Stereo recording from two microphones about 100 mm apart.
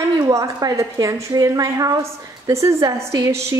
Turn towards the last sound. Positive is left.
turn(degrees=-30)  # may be behind; listen again after turning